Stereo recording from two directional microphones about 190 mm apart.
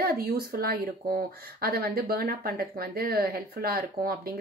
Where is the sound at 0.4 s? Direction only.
55° right (ahead or behind).